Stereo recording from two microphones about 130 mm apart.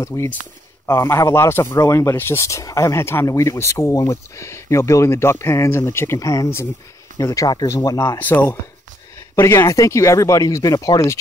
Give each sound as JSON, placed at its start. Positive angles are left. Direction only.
{"t": 0.0, "sound": "speech", "side_deg": 25}
{"t": 8.2, "sound": "speech", "side_deg": 15}